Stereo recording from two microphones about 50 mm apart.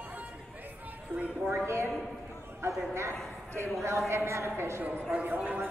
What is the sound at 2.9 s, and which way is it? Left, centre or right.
Speech, right.